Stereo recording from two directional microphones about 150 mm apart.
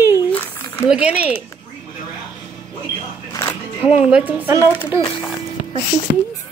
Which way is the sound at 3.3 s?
20° left (ahead or behind).